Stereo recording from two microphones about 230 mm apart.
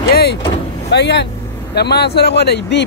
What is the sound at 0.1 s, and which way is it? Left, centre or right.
Speech, left.